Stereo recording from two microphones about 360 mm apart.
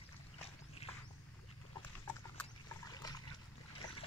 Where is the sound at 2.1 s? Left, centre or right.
Centre.